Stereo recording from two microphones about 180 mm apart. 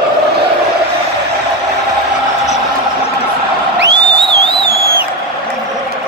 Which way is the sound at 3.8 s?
70° right (ahead or behind).